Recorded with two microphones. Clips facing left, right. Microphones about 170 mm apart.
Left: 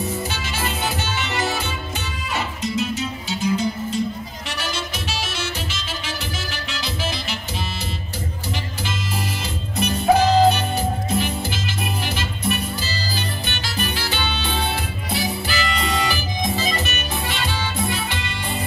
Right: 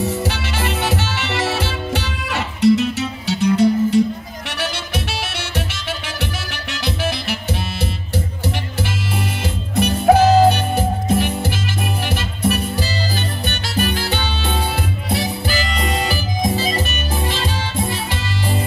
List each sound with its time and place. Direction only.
0.0 s music: 75° right (ahead or behind)
8.8 s music: 60° right (ahead or behind)
15.4 s music: 40° right (ahead or behind)